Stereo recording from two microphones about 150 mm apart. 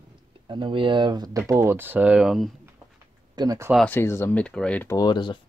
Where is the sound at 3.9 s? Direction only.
15° left (ahead or behind).